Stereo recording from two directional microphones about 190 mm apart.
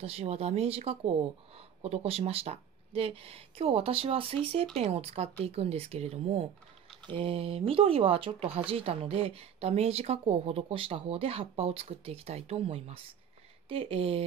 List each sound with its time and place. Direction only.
0.0 s speech: 30° right (ahead or behind)